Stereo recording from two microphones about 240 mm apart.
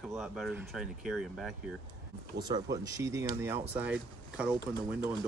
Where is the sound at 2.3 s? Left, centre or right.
Centre.